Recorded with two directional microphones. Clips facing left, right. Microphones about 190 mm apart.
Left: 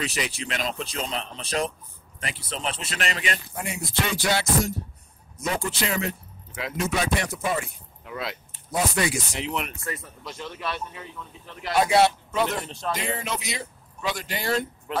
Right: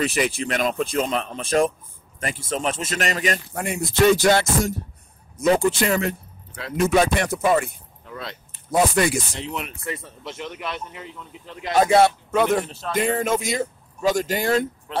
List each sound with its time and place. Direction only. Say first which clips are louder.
0.0 s speech: right 7 dB; 55° right (ahead or behind)
3.5 s speech: right 7 dB; 50° right (ahead or behind)
8.0 s speech: left 2 dB; 5° left (ahead or behind)
8.7 s speech: right 6 dB; 50° right (ahead or behind)
9.4 s speech: left 1 dB; centre (ahead or behind)
9.8 s speech: right 3 dB; 25° right (ahead or behind)
11.7 s speech: right 4 dB; 50° right (ahead or behind)
12.6 s speech: left 1 dB; 5° right (ahead or behind)
12.9 s speech: right 10 dB; 50° right (ahead or behind)